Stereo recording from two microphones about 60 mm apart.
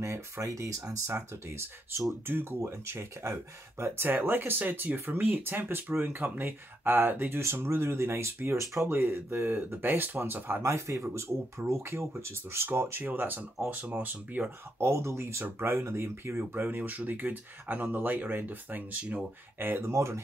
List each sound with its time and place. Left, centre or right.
0.0 s speech: right
1.3 s speech: right
8.8 s speech: right
10.6 s speech: right
13.0 s speech: right
14.8 s speech: right
19.6 s speech: right
19.9 s speech: right